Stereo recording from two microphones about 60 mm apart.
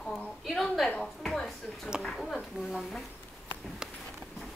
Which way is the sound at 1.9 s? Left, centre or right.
Centre.